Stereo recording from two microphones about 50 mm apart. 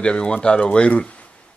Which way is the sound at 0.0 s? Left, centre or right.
Left.